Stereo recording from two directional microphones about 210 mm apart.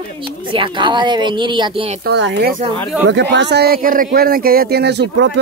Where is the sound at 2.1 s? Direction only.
55° right (ahead or behind).